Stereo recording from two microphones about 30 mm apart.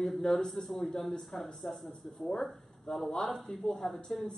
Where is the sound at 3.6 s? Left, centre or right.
Centre.